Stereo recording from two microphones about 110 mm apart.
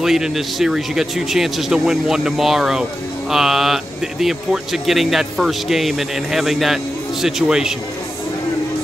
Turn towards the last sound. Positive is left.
turn(degrees=-5)  # may be behind; listen again after turning